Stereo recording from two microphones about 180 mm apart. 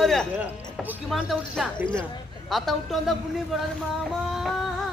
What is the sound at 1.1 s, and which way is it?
Music, centre (ahead or behind).